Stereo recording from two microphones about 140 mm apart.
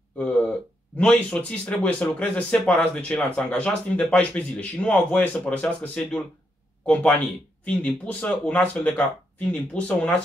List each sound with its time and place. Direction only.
0.2 s speech: 10° left (ahead or behind)